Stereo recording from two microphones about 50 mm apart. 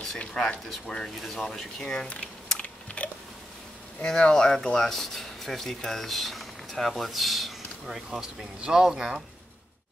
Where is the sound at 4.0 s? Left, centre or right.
Centre.